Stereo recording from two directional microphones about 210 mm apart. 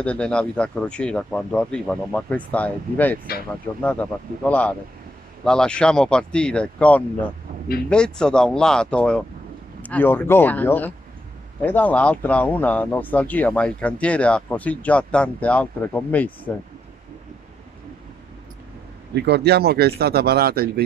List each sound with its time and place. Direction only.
0.0 s speech: 5° left (ahead or behind)
19.1 s speech: 50° right (ahead or behind)